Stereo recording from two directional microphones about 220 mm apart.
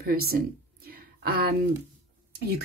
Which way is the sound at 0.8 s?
45° right (ahead or behind).